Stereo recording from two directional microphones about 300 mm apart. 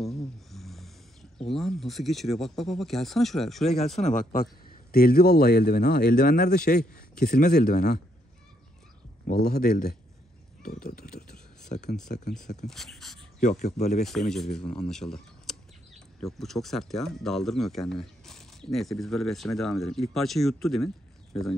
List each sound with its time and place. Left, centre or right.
0.0 s snoring: centre
1.5 s speech: centre
4.0 s speech: left
9.3 s speech: left
12.6 s speech: centre
13.4 s speech: left
14.3 s speech: centre